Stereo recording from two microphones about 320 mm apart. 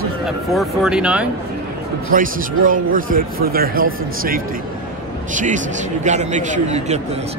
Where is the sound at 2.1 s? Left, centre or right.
Right.